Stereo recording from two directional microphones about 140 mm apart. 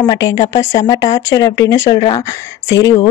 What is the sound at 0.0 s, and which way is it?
Speech, 25° left (ahead or behind).